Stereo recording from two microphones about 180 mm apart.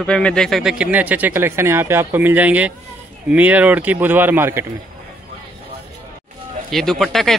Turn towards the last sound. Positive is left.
turn(degrees=0)  # may be behind; listen again after turning